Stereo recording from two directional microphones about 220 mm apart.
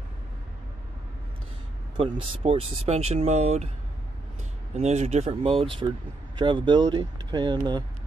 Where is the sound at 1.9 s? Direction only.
25° right (ahead or behind).